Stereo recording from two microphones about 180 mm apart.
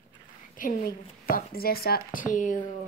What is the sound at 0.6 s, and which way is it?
A woman's voice, 50° left (ahead or behind).